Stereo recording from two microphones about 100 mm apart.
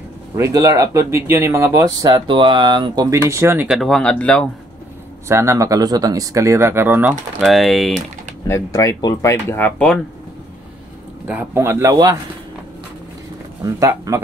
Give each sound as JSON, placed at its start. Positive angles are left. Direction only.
{"t": 0.4, "sound": "speech", "side_deg": -35}
{"t": 2.0, "sound": "speech", "side_deg": -45}
{"t": 3.1, "sound": "speech", "side_deg": -30}
{"t": 3.6, "sound": "speech", "side_deg": 0}
{"t": 5.3, "sound": "speech", "side_deg": -30}
{"t": 7.4, "sound": "speech", "side_deg": 0}
{"t": 8.5, "sound": "speech", "side_deg": 30}
{"t": 11.2, "sound": "speech", "side_deg": -15}
{"t": 11.6, "sound": "speech", "side_deg": -30}
{"t": 13.6, "sound": "speech", "side_deg": -35}